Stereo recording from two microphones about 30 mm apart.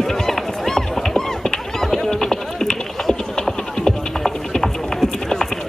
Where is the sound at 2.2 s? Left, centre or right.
Centre.